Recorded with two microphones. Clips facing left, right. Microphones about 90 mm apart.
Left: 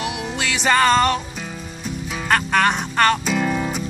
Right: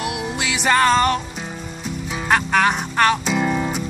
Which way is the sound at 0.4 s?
5° right (ahead or behind).